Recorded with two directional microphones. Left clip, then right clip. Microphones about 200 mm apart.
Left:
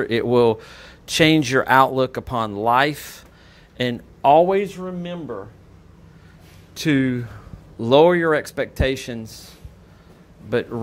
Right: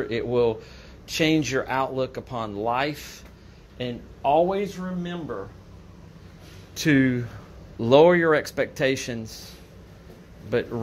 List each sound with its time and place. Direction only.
0.0 s speech: 40° left (ahead or behind)
3.7 s speech: 50° left (ahead or behind)
6.7 s speech: 25° left (ahead or behind)
10.5 s speech: 25° left (ahead or behind)